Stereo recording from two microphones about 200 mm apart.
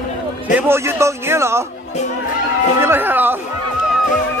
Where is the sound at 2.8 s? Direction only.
10° right (ahead or behind).